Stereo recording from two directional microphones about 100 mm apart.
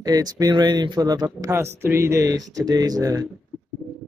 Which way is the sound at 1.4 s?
25° right (ahead or behind).